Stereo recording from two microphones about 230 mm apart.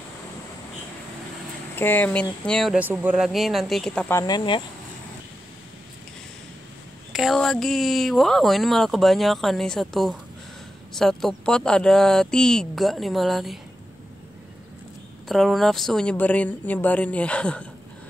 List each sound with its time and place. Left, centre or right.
1.8 s speech: centre
4.2 s speech: centre
7.1 s speech: centre
15.2 s speech: centre